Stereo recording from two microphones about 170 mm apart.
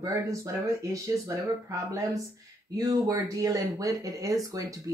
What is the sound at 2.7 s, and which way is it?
Speech, 20° right (ahead or behind).